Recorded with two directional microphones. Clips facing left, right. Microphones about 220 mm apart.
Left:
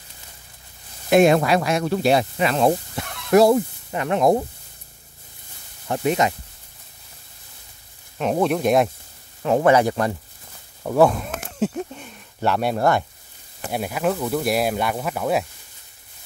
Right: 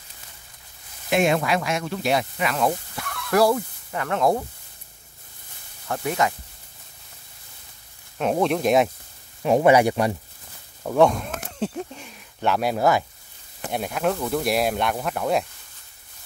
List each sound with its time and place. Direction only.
1.1 s speech: 40° left (ahead or behind); by 4.5 s 20° left (ahead or behind)
5.9 s speech: 20° left (ahead or behind)
8.2 s speech: centre (ahead or behind)
9.4 s speech: 15° right (ahead or behind)
10.8 s a sound: 5° left (ahead or behind)
13.7 s speech: 5° left (ahead or behind)